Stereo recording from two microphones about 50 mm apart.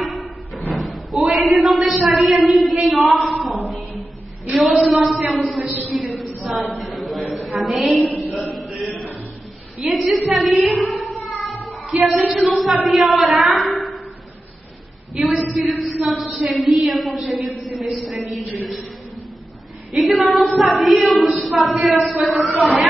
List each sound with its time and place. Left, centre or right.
0.6 s a man's voice: centre
4.6 s speech: centre
5.9 s a sound: centre
8.5 s chant: centre
9.8 s a woman's voice: centre
11.9 s speech: right
12.4 s speech: centre
15.1 s a man's voice: centre
19.9 s speech: centre